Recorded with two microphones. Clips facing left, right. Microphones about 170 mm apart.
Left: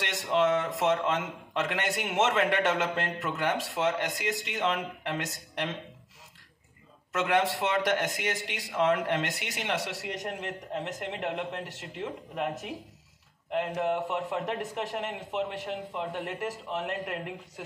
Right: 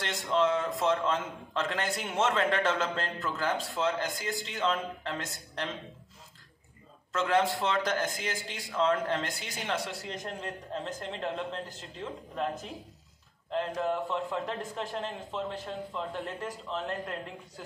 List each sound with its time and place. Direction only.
0.1 s a man's voice: 20° left (ahead or behind)
7.1 s a man's voice: 20° left (ahead or behind)
11.6 s a man's voice: 80° left
12.0 s a man's voice: 20° left (ahead or behind)